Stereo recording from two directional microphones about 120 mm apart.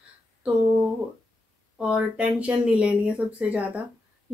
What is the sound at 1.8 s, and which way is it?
Speech, 10° right (ahead or behind).